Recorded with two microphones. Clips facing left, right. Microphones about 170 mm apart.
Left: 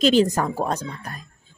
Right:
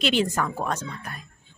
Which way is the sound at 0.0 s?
40° left (ahead or behind).